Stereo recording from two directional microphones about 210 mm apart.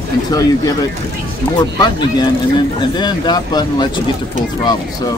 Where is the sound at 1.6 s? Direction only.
20° left (ahead or behind).